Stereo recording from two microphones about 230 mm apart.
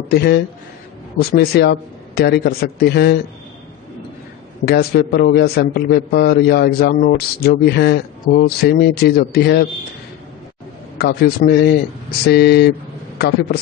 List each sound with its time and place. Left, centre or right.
0.1 s speech: left
4.6 s speech: left
11.0 s speech: left